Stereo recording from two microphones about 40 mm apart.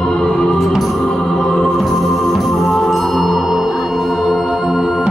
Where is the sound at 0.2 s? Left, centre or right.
Centre.